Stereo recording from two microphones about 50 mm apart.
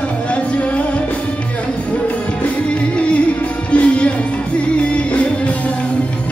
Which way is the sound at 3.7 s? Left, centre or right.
Left.